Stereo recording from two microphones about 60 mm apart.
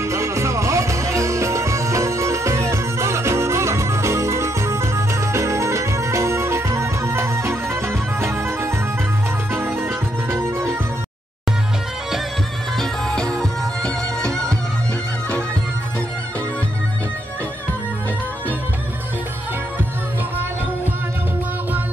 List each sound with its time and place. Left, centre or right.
0.0 s music: right
12.7 s music: centre